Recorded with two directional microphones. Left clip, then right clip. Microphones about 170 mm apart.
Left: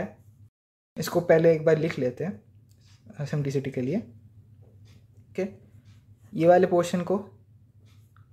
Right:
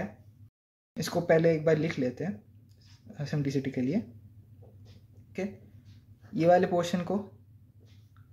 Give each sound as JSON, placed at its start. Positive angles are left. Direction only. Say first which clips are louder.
{"t": 0.9, "sound": "speech", "louder": "left 4 dB", "side_deg": 20}
{"t": 5.3, "sound": "speech", "louder": "left 5 dB", "side_deg": 20}